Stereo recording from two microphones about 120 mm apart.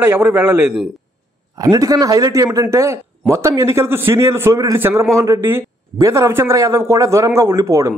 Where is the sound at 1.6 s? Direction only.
30° right (ahead or behind).